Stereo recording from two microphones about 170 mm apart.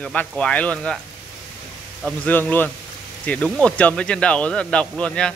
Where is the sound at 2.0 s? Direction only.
10° left (ahead or behind).